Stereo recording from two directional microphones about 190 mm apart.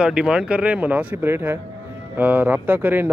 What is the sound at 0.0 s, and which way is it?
Speech, 5° right (ahead or behind).